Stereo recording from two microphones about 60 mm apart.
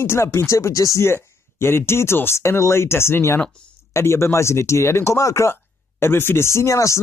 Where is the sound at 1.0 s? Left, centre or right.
Left.